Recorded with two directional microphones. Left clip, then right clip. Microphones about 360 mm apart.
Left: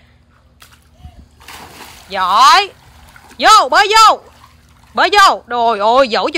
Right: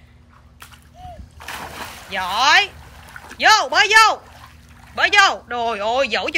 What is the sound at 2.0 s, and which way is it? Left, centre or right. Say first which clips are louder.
Speech: left 8 dB; centre.